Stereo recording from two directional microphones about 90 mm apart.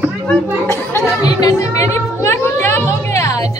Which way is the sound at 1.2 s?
45° left (ahead or behind).